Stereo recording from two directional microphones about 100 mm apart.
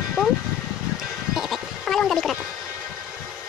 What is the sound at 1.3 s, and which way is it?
Sheep, centre (ahead or behind).